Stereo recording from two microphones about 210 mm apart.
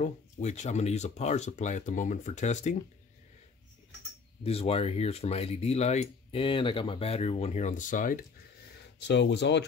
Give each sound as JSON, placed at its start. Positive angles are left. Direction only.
{"t": 0.0, "sound": "speech", "side_deg": 35}
{"t": 4.4, "sound": "speech", "side_deg": 30}
{"t": 9.0, "sound": "speech", "side_deg": 55}